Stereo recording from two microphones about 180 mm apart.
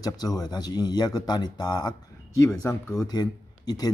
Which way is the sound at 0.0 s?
20° left (ahead or behind).